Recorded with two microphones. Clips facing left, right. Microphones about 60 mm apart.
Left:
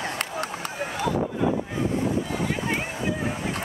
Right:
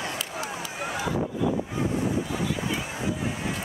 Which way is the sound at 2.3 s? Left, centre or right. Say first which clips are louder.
Left 2 dB; left.